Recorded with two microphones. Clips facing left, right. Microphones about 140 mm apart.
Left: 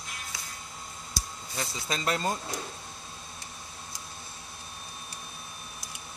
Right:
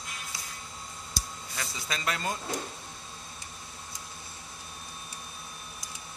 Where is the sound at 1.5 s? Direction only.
35° left (ahead or behind).